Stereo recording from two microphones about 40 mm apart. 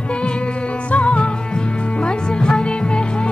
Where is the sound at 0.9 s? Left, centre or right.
Left.